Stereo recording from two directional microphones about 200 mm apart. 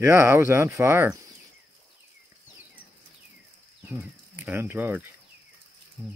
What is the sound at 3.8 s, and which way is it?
Speech, 10° right (ahead or behind).